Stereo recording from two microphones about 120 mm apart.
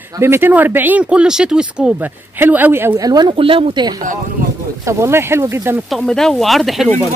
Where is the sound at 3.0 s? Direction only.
35° right (ahead or behind).